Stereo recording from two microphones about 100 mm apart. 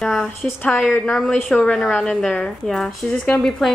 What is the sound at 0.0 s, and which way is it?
Speech, 5° left (ahead or behind).